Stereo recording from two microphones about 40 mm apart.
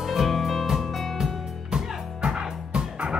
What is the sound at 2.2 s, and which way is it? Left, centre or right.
Music, right.